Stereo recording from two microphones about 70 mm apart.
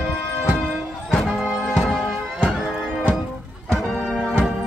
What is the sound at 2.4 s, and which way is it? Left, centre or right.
Music, centre.